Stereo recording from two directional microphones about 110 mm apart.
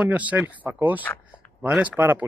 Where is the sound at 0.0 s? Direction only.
10° right (ahead or behind).